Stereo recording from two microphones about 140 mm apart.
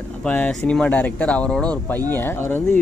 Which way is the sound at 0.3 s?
5° left (ahead or behind).